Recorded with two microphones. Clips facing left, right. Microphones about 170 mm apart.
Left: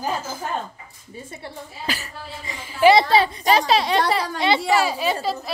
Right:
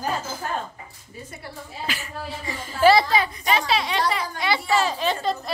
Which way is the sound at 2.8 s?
20° left (ahead or behind).